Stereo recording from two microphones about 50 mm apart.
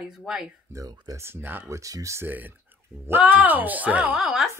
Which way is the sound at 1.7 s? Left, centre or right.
Right.